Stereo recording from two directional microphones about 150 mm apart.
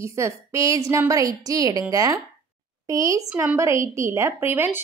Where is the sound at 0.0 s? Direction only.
20° right (ahead or behind).